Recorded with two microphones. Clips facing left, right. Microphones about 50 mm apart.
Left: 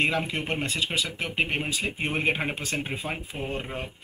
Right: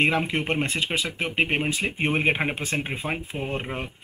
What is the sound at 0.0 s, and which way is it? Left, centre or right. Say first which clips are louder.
Speech: right 3 dB; right.